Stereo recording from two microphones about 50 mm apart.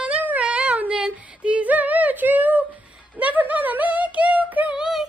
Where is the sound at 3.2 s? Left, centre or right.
Right.